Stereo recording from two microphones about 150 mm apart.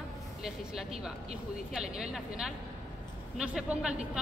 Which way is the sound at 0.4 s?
5° right (ahead or behind).